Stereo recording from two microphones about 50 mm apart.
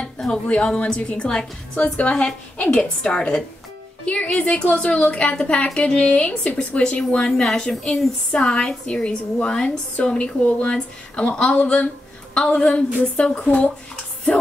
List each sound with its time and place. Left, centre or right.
0.2 s a sound: centre
0.8 s a woman's voice: left
2.7 s a woman's voice: centre